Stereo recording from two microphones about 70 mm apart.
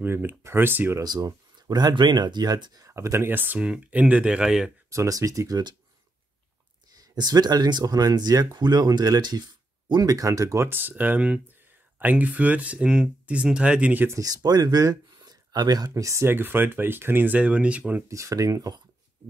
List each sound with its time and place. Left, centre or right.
0.0 s speech: right
1.0 s speech: right
2.9 s speech: right
3.5 s speech: centre
4.8 s speech: right
7.2 s speech: right
9.9 s speech: right
10.7 s speech: right
14.2 s speech: right
15.9 s speech: right
16.3 s speech: right
18.0 s speech: right